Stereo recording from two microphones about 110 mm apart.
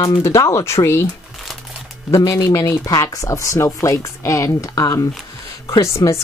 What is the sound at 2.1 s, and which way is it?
Speech, 30° left (ahead or behind).